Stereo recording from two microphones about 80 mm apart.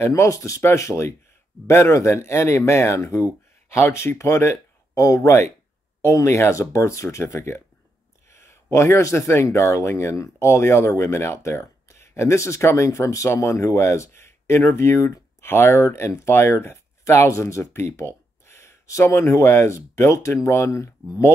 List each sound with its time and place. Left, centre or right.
0.0 s speech: left